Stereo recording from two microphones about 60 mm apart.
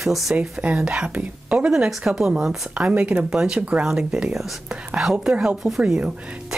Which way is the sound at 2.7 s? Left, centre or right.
Right.